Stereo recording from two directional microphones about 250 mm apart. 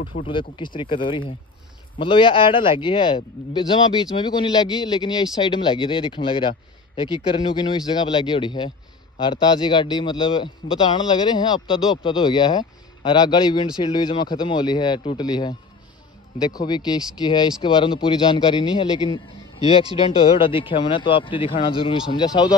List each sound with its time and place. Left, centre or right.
0.0 s speech: left
0.3 s a man's voice: centre
7.5 s a man's voice: centre